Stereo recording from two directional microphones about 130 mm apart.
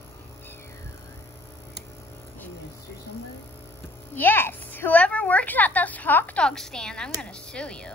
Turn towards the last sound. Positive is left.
turn(degrees=5)  # may be behind; listen again after turning